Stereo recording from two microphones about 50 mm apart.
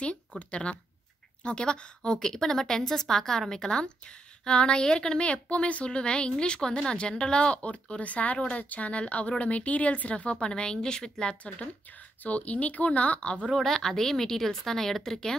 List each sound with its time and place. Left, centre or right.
0.4 s a woman's voice: left
12.2 s a woman's voice: left
13.7 s a woman's voice: centre